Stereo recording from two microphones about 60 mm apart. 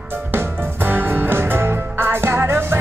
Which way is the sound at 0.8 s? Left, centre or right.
Right.